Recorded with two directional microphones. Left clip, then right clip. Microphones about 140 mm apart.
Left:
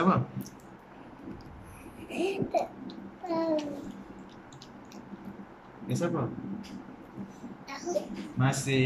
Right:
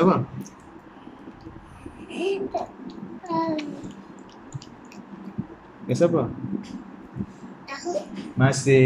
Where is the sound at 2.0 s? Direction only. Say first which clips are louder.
Right 5 dB; 30° left (ahead or behind).